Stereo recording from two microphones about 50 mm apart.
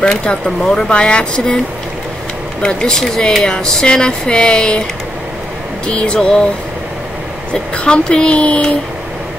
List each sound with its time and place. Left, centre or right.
0.0 s a woman's voice: left
2.6 s speech: centre
5.9 s speech: left
7.7 s a woman's voice: left